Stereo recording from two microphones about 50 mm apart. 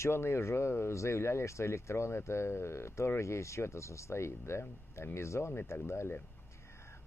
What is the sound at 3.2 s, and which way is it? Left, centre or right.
Speech, left.